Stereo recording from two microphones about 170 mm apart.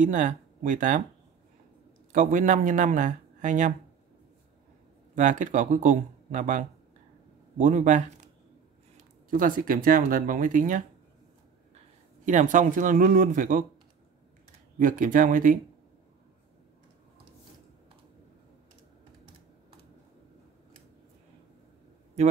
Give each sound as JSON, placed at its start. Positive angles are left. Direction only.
{"t": 0.0, "sound": "speech", "side_deg": -50}
{"t": 2.1, "sound": "speech", "side_deg": -50}
{"t": 5.1, "sound": "speech", "side_deg": -50}
{"t": 12.3, "sound": "speech", "side_deg": -50}
{"t": 14.8, "sound": "speech", "side_deg": -55}